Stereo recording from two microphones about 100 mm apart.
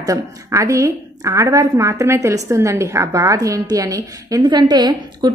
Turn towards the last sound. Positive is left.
turn(degrees=-45)  # may be behind; listen again after turning